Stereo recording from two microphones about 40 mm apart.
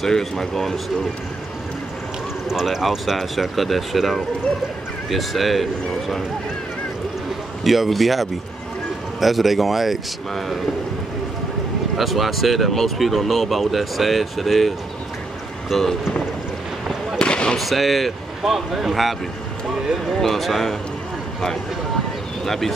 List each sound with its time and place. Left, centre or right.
0.0 s speech: centre
2.5 s speech: centre
7.6 s speech: centre
12.0 s speech: centre
15.7 s speech: centre
17.2 s fireworks: left
17.6 s speech: centre
22.4 s speech: centre